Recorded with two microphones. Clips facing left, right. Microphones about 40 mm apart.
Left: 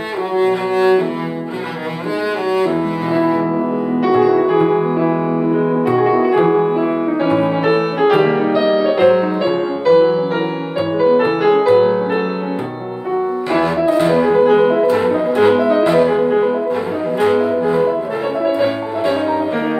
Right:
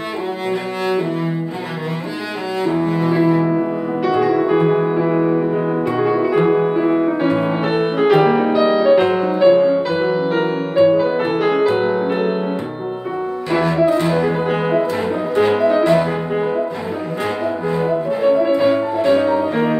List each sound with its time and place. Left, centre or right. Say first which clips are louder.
2.8 s cello: even; centre
5.9 s music: left 4 dB; centre
13.5 s music: right 1 dB; centre
19.0 s music: right 1 dB; centre